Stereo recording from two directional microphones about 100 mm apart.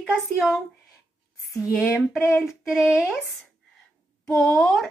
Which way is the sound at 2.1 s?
25° left (ahead or behind).